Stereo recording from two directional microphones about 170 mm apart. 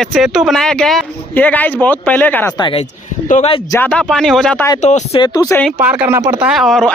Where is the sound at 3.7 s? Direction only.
10° left (ahead or behind).